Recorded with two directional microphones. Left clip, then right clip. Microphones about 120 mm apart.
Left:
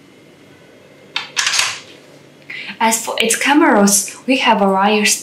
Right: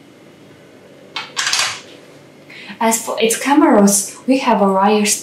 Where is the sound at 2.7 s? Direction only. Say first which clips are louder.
Left 1 dB; 20° left (ahead or behind).